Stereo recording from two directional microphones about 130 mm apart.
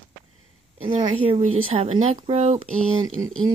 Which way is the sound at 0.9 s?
50° right (ahead or behind).